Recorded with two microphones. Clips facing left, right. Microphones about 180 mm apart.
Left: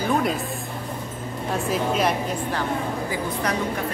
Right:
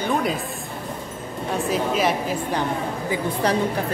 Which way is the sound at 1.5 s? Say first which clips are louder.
Right 1 dB; centre (ahead or behind).